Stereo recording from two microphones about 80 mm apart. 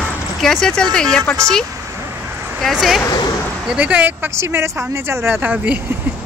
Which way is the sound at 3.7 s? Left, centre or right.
Centre.